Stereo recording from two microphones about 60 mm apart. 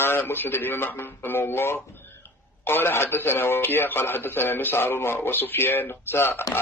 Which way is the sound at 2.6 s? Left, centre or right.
Left.